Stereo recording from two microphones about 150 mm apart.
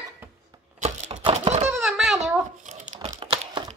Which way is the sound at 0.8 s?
50° right (ahead or behind).